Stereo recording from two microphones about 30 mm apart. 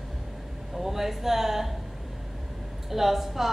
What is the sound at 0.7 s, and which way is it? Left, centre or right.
Speech, centre.